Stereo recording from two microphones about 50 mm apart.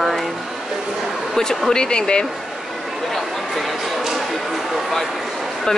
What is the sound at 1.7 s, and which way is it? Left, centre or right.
Speech, centre.